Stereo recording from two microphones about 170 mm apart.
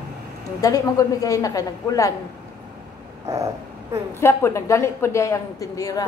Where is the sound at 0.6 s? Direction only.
20° left (ahead or behind).